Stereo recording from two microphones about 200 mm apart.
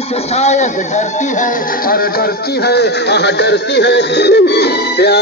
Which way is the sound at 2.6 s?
55° left (ahead or behind).